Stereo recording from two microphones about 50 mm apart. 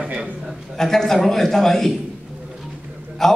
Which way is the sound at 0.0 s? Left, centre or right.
Centre.